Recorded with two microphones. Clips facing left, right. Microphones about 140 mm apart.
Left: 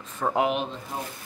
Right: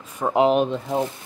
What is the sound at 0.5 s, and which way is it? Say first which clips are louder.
Speech: right 9 dB; 55° right (ahead or behind).